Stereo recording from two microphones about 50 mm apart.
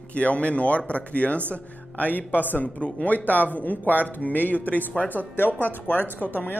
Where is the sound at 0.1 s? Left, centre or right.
Left.